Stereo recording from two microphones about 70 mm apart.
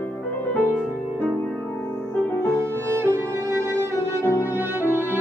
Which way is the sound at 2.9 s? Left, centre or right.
Right.